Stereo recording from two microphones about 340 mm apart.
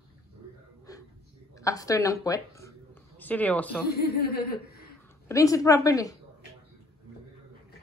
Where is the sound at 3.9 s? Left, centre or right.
Left.